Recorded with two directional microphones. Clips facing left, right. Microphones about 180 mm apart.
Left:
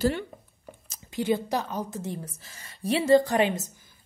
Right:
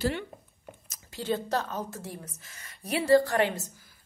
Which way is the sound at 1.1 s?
15° left (ahead or behind).